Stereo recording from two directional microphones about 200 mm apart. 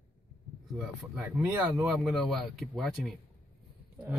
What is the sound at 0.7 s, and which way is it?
Speech, 5° right (ahead or behind).